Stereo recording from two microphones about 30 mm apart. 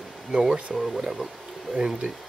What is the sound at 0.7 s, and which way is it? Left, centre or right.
Speech, centre.